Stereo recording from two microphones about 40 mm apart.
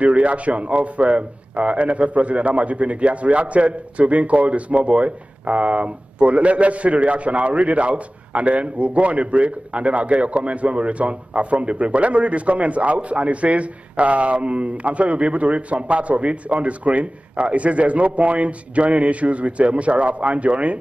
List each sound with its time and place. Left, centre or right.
0.0 s a man's voice: right